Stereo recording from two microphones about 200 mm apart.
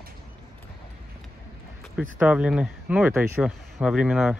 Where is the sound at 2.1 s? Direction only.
5° right (ahead or behind).